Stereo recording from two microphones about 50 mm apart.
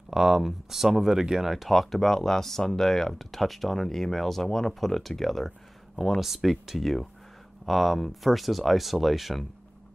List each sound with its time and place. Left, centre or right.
0.1 s speech: centre